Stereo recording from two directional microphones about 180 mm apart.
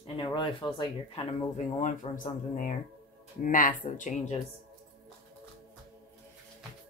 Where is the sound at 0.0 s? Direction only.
30° left (ahead or behind).